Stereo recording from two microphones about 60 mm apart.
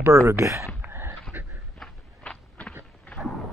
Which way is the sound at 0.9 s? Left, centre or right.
Right.